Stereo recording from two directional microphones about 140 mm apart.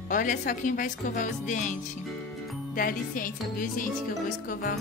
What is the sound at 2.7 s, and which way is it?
Speech, 85° left.